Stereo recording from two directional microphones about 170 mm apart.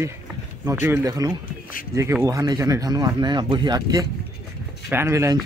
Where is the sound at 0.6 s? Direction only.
15° right (ahead or behind).